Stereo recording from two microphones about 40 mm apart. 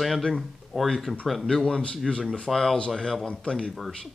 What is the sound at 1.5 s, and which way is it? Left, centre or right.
Speech, centre.